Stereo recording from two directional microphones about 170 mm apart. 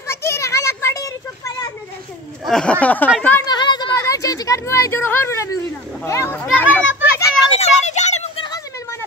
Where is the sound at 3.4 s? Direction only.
25° left (ahead or behind).